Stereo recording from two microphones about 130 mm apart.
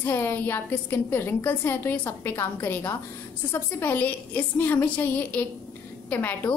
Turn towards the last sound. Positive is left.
turn(degrees=15)  # may be behind; listen again after turning